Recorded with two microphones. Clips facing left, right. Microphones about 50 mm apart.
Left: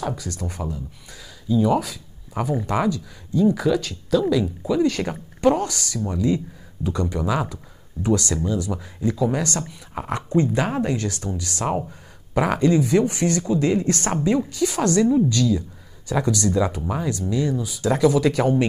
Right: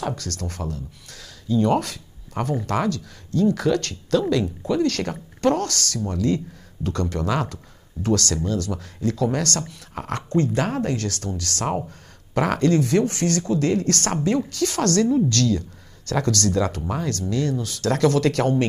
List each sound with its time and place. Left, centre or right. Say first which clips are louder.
0.1 s speech: left 1 dB; centre
11.6 s speech: left 1 dB; centre
12.4 s speech: left 1 dB; centre